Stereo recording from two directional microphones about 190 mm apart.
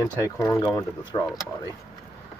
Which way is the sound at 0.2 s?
15° left (ahead or behind).